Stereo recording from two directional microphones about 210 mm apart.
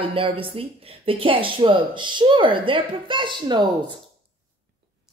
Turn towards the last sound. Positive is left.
turn(degrees=-20)  # may be behind; listen again after turning